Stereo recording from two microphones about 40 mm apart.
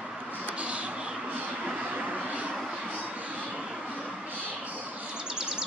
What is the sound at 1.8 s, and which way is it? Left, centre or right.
Vehicle, right.